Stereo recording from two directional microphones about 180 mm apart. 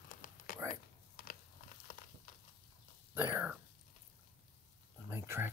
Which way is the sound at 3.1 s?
10° right (ahead or behind).